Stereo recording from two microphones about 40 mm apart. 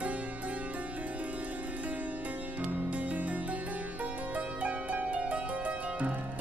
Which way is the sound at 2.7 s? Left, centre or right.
Right.